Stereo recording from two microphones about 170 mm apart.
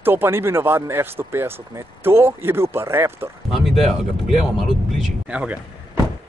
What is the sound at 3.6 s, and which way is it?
Speech, centre (ahead or behind).